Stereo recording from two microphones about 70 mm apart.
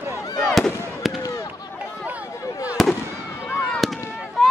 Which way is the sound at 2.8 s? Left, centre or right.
Centre.